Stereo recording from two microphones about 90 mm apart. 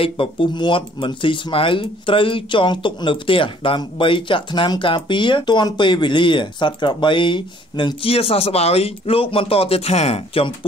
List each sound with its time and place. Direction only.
0.0 s speech: 80° left